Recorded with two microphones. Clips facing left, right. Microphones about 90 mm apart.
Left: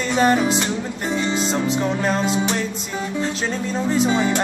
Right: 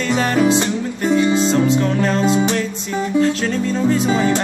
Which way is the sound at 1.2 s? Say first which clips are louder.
Right 6 dB; 20° right (ahead or behind).